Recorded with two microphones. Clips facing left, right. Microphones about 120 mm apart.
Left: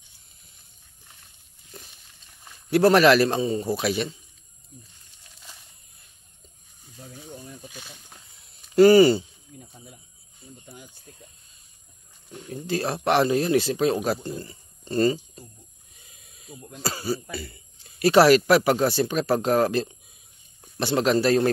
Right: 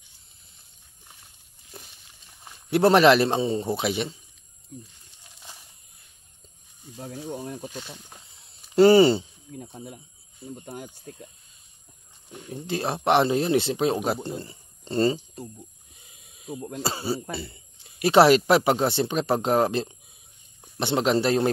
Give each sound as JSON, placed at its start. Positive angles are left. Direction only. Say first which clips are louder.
{"t": 2.4, "sound": "speech", "louder": "left 1 dB", "side_deg": -20}
{"t": 7.0, "sound": "a sound", "louder": "right 8 dB", "side_deg": -70}
{"t": 8.7, "sound": "speech", "louder": "left 1 dB", "side_deg": -25}
{"t": 9.6, "sound": "speech", "louder": "right 8 dB", "side_deg": -60}
{"t": 12.3, "sound": "speech", "louder": "left 2 dB", "side_deg": -20}
{"t": 16.2, "sound": "snake", "louder": "even", "side_deg": -15}
{"t": 16.4, "sound": "speech", "louder": "right 9 dB", "side_deg": -65}
{"t": 16.8, "sound": "speech", "louder": "left 1 dB", "side_deg": -25}